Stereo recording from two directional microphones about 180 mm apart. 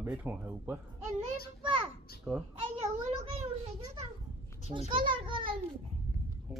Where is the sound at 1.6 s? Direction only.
30° right (ahead or behind).